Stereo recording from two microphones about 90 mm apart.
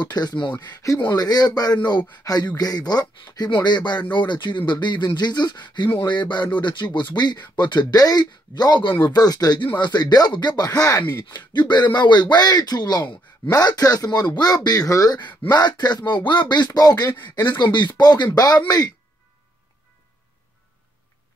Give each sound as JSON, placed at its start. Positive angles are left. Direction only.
{"t": 0.0, "sound": "speech", "side_deg": 50}